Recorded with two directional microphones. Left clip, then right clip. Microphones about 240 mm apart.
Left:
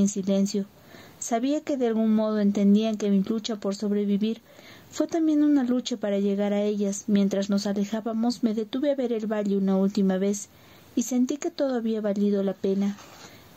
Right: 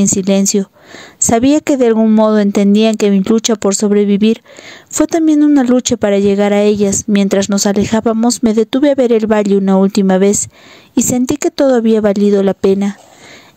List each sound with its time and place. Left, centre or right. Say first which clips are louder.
0.0 s a woman's voice: right 13 dB; right